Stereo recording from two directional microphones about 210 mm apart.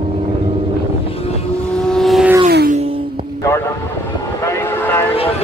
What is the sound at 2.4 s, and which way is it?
Music, 40° right (ahead or behind).